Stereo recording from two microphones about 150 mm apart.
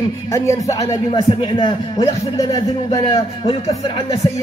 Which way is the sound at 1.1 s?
35° left (ahead or behind).